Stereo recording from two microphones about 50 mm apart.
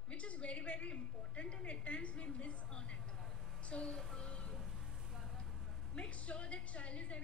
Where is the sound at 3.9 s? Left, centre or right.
Centre.